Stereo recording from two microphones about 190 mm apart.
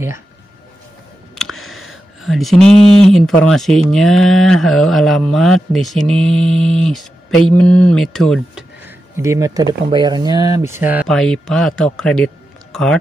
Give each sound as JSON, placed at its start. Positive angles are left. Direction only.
{"t": 1.3, "sound": "speech", "side_deg": 0}
{"t": 3.9, "sound": "mantra", "side_deg": 0}
{"t": 8.8, "sound": "speech", "side_deg": -15}
{"t": 11.1, "sound": "mantra", "side_deg": 0}